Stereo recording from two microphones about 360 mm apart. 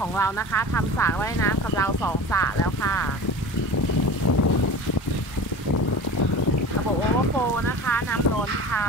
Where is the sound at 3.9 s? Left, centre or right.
Left.